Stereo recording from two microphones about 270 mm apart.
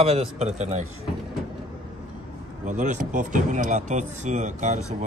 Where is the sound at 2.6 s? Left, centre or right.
Right.